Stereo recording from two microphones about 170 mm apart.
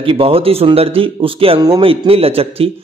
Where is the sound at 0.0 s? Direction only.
35° right (ahead or behind).